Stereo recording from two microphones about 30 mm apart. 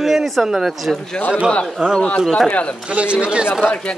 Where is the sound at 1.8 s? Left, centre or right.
Right.